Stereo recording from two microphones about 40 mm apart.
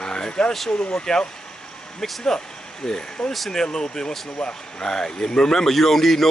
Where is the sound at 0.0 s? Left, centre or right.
Left.